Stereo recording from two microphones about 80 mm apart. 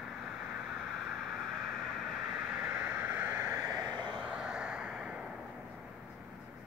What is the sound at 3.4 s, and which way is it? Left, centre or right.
Vehicle, right.